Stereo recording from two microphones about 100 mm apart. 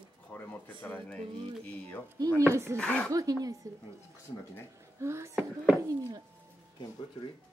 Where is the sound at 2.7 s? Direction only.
10° left (ahead or behind).